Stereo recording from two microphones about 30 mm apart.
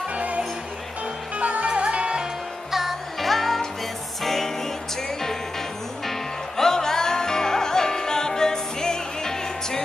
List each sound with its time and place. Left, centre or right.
0.1 s music: right
1.4 s music: right
1.7 s music: right
2.7 s music: centre
6.0 s music: centre